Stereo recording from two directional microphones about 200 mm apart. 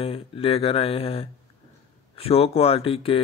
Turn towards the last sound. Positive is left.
turn(degrees=30)  # may be behind; listen again after turning